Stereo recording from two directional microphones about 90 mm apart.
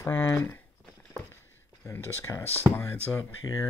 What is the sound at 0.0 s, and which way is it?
Speech, 25° left (ahead or behind).